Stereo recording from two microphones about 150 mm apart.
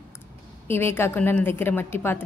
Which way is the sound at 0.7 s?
15° left (ahead or behind).